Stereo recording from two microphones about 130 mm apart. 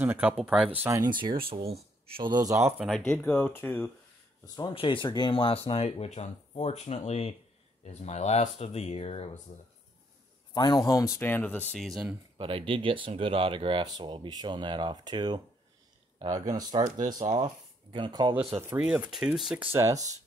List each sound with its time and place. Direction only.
0.0 s speech: 15° right (ahead or behind)
0.4 s speech: centre (ahead or behind)
0.8 s speech: 25° right (ahead or behind)
1.1 s speech: 40° right (ahead or behind); by 2.7 s 25° right (ahead or behind)
3.1 s speech: 10° left (ahead or behind)
4.6 s speech: 40° left (ahead or behind)
10.5 s speech: 35° left (ahead or behind)
11.2 s speech: 15° left (ahead or behind)
12.4 s speech: 45° right (ahead or behind)
16.8 s speech: 75° right (ahead or behind)
17.1 s speech: 30° right (ahead or behind)
18.3 s speech: 20° right (ahead or behind)
19.6 s speech: 20° right (ahead or behind)